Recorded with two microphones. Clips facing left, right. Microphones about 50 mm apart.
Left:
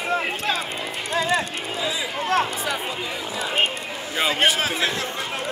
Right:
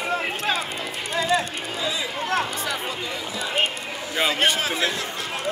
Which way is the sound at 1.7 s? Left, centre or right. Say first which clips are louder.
Left 1 dB; centre.